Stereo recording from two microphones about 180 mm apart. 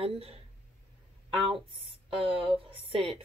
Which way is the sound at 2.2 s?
30° right (ahead or behind).